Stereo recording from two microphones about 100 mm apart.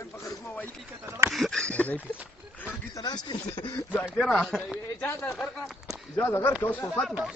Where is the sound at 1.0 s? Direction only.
25° right (ahead or behind).